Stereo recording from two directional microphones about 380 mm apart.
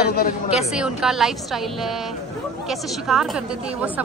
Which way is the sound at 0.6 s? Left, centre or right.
Centre.